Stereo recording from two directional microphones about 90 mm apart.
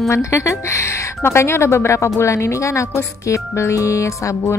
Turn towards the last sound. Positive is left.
turn(degrees=35)  # may be behind; listen again after turning